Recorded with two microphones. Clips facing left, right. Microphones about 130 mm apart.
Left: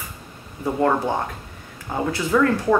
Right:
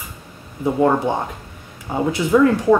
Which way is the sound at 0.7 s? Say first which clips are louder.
Right 3 dB; 10° right (ahead or behind).